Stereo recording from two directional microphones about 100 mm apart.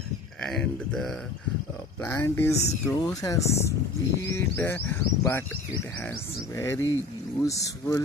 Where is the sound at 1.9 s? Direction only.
25° left (ahead or behind).